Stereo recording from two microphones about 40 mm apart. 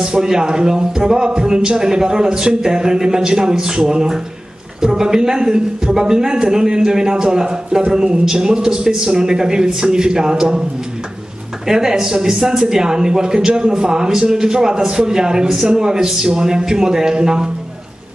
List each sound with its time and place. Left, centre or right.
0.0 s speech: centre
11.6 s speech: centre